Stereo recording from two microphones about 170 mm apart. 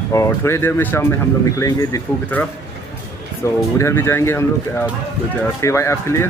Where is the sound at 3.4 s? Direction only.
15° left (ahead or behind).